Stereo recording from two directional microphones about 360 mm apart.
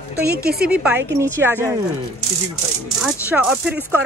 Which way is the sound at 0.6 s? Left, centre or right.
Centre.